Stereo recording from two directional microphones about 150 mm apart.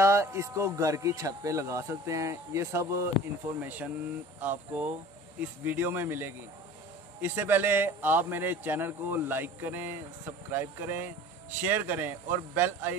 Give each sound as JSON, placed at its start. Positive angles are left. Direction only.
{"t": 0.0, "sound": "a man's voice", "side_deg": -20}